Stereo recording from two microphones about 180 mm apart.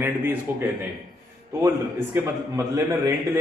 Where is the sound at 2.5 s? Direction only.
20° right (ahead or behind).